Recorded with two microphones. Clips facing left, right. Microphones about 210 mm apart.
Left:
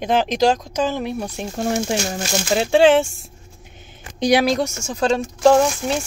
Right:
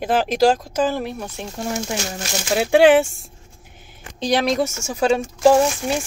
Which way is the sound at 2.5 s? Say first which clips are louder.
Right 1 dB; 10° right (ahead or behind).